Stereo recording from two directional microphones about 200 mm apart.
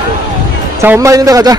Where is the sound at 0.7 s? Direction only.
15° right (ahead or behind).